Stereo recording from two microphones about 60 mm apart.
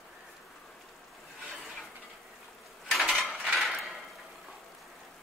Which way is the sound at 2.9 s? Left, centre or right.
Centre.